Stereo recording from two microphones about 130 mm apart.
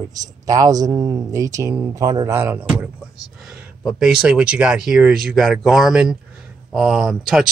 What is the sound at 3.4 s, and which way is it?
Speech, 5° right (ahead or behind).